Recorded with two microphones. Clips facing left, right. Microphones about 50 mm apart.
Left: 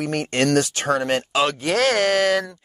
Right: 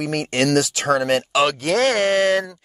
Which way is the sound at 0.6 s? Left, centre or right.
Right.